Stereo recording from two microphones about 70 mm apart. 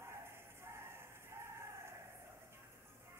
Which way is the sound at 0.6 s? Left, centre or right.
Right.